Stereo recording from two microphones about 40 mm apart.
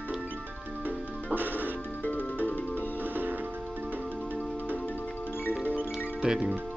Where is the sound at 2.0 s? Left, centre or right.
Left.